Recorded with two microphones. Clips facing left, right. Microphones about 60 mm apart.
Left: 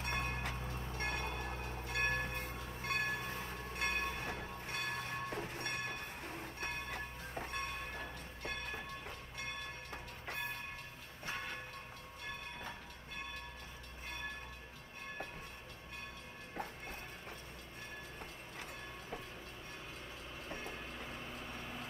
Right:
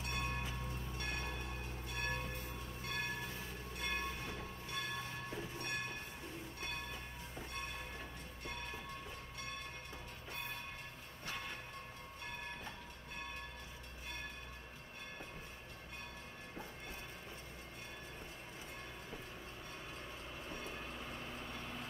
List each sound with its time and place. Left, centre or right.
0.0 s music: left
0.4 s train: left
0.9 s a sound: left
2.9 s train: left
20.6 s vehicle: centre